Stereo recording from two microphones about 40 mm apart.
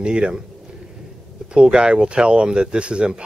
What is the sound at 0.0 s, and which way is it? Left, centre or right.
Speech, right.